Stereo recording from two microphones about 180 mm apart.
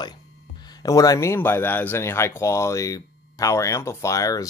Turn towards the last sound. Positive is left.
turn(degrees=20)  # may be behind; listen again after turning